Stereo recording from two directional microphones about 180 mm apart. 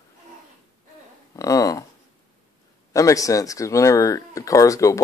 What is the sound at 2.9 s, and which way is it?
Speech, 20° left (ahead or behind).